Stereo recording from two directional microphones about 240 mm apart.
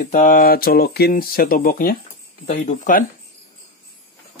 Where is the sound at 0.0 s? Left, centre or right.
Left.